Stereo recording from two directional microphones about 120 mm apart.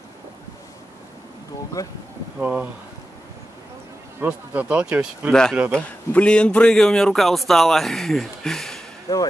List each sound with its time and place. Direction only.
1.8 s speech: 25° left (ahead or behind)
2.3 s speech: 10° right (ahead or behind)
4.2 s speech: 10° right (ahead or behind)
5.3 s speech: 5° left (ahead or behind)
9.1 s speech: 30° left (ahead or behind)